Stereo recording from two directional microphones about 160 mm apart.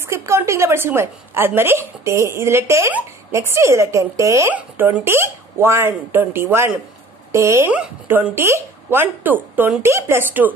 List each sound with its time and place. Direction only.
0.1 s a woman's voice: 15° right (ahead or behind)